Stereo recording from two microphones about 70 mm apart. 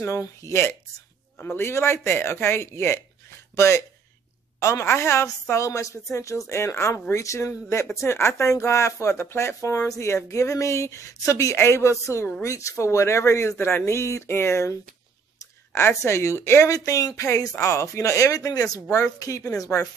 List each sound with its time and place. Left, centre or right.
0.2 s speech: left